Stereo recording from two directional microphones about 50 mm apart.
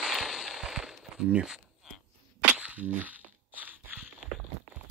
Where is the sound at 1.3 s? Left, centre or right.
Centre.